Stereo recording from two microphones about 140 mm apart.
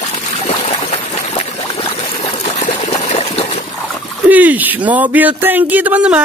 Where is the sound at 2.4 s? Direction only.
55° left (ahead or behind).